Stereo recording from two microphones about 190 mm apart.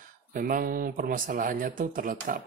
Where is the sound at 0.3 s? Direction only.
45° right (ahead or behind).